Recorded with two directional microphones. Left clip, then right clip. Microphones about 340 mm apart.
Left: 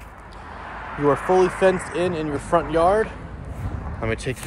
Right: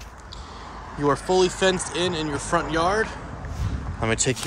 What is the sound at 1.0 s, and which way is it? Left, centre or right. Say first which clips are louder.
Speech: left 3 dB; centre.